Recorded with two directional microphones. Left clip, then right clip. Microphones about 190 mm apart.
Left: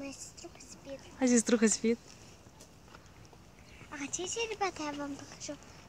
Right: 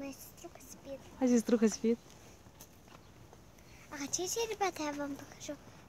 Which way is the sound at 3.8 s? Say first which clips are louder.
Right 1 dB; 45° right (ahead or behind).